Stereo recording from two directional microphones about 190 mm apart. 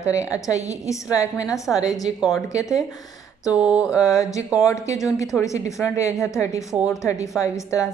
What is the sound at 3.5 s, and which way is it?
Mantra, 5° right (ahead or behind).